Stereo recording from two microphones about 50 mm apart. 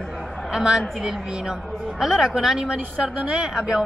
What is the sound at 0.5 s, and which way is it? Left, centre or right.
A woman's voice, centre.